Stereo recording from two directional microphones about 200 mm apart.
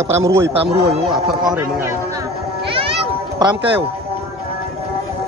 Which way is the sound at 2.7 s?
25° right (ahead or behind).